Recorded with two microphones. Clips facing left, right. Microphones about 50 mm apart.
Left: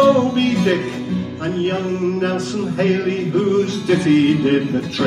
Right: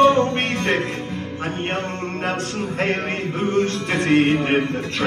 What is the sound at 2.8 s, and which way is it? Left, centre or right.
Music, right.